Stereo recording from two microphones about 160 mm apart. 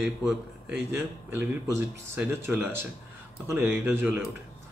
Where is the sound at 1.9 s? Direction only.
15° right (ahead or behind).